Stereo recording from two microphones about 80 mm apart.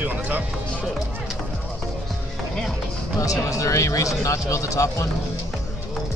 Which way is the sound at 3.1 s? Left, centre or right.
Left.